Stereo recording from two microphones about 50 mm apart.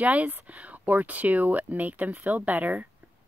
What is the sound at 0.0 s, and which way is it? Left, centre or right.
Speech, right.